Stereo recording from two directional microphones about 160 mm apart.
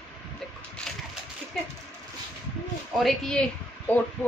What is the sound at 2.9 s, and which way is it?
Speech, centre (ahead or behind).